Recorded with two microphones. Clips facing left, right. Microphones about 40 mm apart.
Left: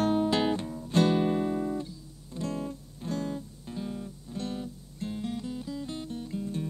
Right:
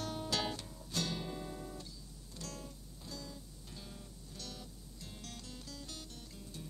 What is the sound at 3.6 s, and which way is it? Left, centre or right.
Music, left.